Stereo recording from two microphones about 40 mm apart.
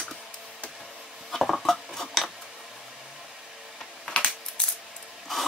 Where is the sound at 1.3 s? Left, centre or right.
Centre.